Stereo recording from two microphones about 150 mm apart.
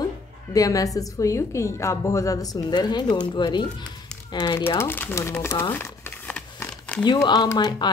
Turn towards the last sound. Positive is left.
turn(degrees=25)  # may be behind; listen again after turning